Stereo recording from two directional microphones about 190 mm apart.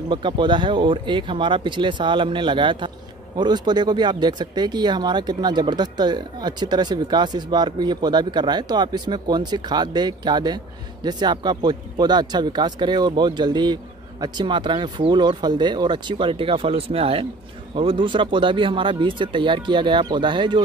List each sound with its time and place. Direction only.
0.1 s speech: 25° right (ahead or behind)